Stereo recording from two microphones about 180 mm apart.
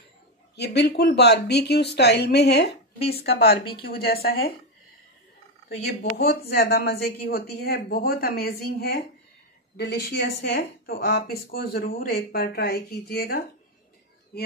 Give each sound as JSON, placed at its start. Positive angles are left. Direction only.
{"t": 0.6, "sound": "speech", "side_deg": 65}
{"t": 5.9, "sound": "speech", "side_deg": 55}